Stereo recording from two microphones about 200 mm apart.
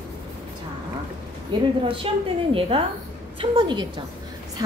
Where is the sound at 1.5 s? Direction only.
25° right (ahead or behind).